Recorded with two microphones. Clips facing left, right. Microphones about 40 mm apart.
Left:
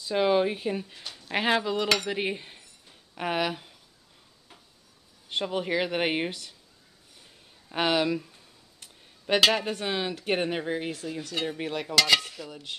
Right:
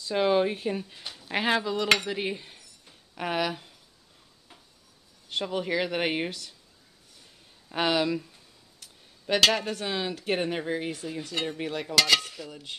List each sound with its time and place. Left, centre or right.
0.1 s speech: centre
2.0 s cutlery: centre
3.2 s speech: centre
5.3 s speech: centre
7.7 s speech: centre
9.4 s speech: centre